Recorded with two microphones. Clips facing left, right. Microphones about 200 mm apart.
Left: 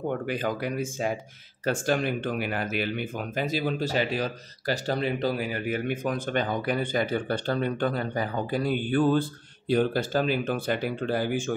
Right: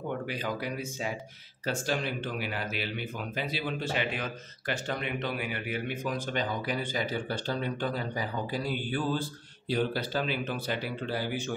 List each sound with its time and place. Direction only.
0.3 s speech: 50° left (ahead or behind)